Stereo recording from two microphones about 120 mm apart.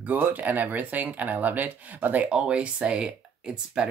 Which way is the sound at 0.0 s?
15° right (ahead or behind).